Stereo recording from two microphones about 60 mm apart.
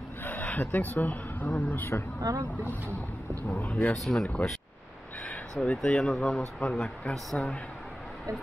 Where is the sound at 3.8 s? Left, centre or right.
Centre.